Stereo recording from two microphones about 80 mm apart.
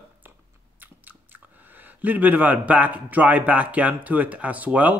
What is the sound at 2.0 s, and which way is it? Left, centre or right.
A man's voice, right.